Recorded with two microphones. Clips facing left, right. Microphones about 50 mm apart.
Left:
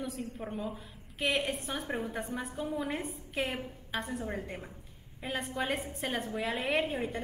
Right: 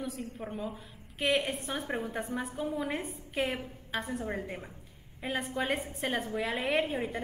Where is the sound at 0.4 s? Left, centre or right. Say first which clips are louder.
Even; centre.